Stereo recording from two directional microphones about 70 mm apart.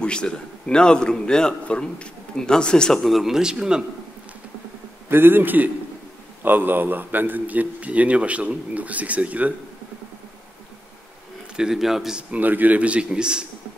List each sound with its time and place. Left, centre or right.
0.0 s a man's voice: centre
5.1 s a man's voice: right
11.5 s a man's voice: centre
12.2 s a man's voice: right